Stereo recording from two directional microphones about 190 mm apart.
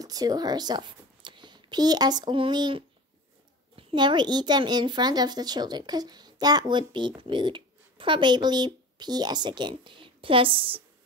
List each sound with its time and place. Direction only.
0.0 s a woman's voice: 20° right (ahead or behind)